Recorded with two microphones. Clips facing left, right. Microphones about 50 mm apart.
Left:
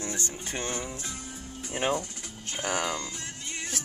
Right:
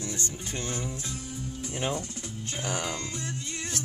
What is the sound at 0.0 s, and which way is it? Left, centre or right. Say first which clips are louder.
Speech: even; left.